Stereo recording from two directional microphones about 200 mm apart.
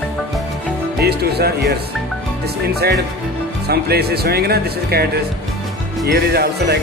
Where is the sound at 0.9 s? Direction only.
50° right (ahead or behind).